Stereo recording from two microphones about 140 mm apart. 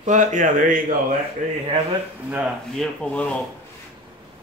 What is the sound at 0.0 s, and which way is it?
Speech, 60° right (ahead or behind).